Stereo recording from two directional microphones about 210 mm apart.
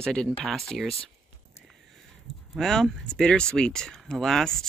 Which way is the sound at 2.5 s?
Centre (ahead or behind).